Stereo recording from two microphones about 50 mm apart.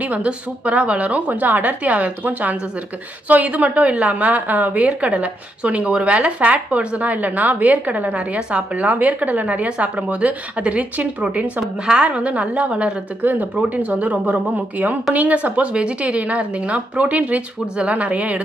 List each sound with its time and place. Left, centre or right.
0.0 s a woman's voice: right
13.2 s a woman's voice: right